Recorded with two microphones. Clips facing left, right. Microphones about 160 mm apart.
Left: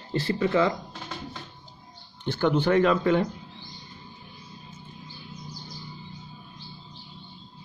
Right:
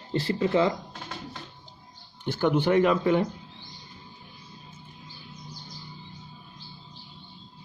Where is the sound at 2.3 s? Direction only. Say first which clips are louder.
Even; 10° right (ahead or behind).